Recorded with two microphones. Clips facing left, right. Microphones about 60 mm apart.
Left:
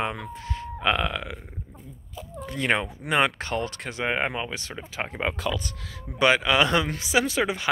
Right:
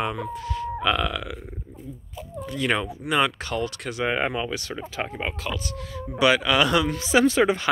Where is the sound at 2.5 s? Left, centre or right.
Left.